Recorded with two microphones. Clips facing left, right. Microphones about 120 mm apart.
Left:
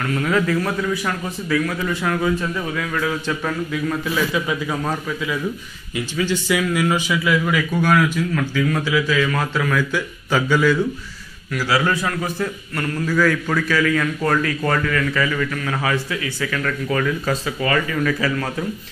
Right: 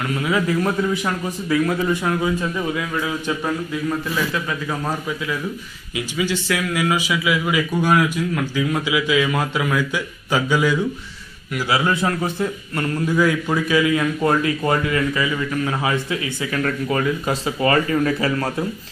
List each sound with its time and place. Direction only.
0.5 s a man's voice: 20° right (ahead or behind)
4.3 s speech: 5° left (ahead or behind)
5.9 s a man's voice: 5° right (ahead or behind); by 18.7 s 35° right (ahead or behind)